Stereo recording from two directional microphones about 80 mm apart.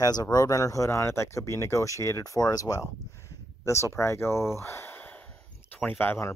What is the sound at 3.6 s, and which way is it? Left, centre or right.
Speech, left.